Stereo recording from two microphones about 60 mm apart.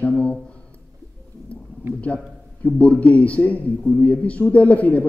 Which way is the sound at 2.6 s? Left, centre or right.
Left.